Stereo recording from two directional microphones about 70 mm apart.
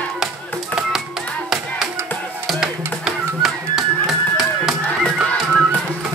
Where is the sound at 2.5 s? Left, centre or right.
Centre.